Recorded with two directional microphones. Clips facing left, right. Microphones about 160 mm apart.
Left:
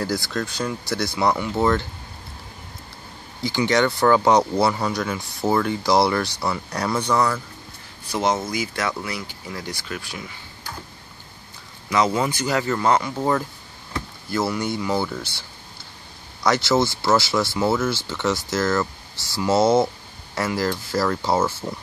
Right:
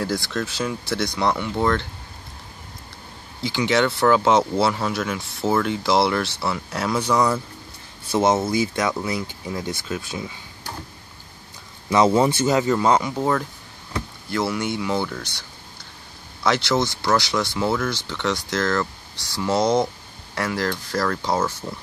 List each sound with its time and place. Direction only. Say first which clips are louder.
0.0 s speech: even; centre (ahead or behind)
3.4 s speech: even; centre (ahead or behind)
8.1 s speech: right 4 dB; 25° right (ahead or behind)
11.9 s speech: right 4 dB; 25° right (ahead or behind)
13.2 s speech: even; centre (ahead or behind)
16.4 s speech: left 1 dB; centre (ahead or behind)